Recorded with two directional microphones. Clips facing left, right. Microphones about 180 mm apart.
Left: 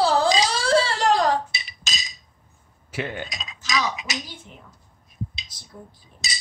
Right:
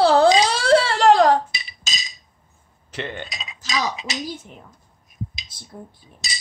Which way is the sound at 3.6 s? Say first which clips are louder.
Right 1 dB; 35° right (ahead or behind).